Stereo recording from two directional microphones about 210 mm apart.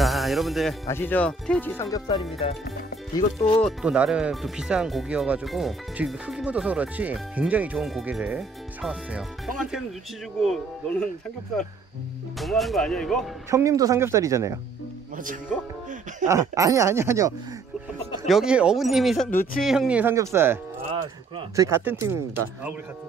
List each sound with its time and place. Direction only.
0.0 s music: centre (ahead or behind)
0.8 s speech: 10° left (ahead or behind)
3.3 s speech: 25° left (ahead or behind)
3.6 s speech: 5° right (ahead or behind)
10.4 s speech: centre (ahead or behind)
12.4 s speech: centre (ahead or behind)
13.5 s speech: 15° right (ahead or behind)
16.3 s speech: 15° right (ahead or behind)
18.3 s speech: 5° right (ahead or behind)
20.8 s speech: 25° right (ahead or behind)
21.6 s speech: 10° right (ahead or behind)